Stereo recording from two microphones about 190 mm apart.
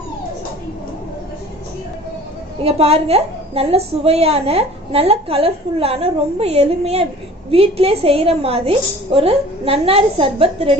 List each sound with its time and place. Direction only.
2.6 s a woman's voice: 30° right (ahead or behind)